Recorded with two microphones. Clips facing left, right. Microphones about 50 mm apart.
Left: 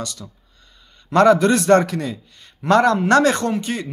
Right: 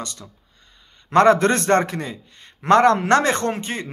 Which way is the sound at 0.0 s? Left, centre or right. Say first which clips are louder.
Left 3 dB; right.